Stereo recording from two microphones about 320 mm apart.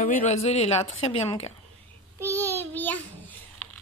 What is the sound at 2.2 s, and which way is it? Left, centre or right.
Child singing, centre.